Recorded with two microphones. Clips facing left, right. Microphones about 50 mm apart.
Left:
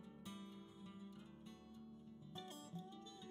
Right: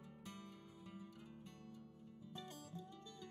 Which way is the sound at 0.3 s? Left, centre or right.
Right.